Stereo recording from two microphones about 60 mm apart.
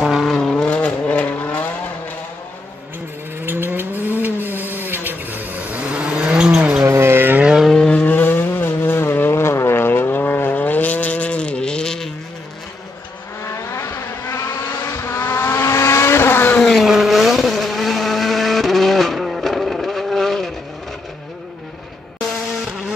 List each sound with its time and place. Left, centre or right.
0.0 s vehicle: centre
0.3 s vehicle: centre
0.7 s vehicle: left
3.3 s vehicle: right; by 6.6 s centre
6.8 s a sound: right
7.7 s vehicle: centre
8.0 s vehicle: left; by 12.1 s centre
13.4 s vehicle: left
16.6 s vehicle: centre